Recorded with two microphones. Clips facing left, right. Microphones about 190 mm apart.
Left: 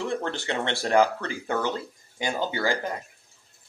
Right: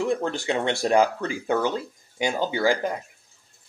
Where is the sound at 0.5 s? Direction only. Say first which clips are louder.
Right 3 dB; 15° right (ahead or behind).